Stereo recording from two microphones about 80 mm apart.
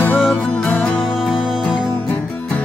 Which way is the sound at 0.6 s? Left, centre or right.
Centre.